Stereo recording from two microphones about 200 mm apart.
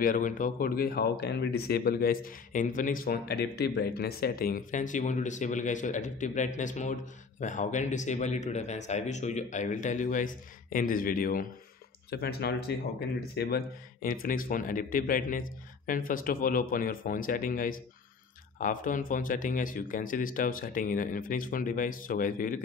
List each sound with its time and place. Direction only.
0.0 s speech: 40° left (ahead or behind)